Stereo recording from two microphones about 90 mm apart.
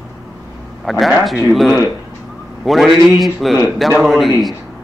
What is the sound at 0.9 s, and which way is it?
A man's voice, centre (ahead or behind).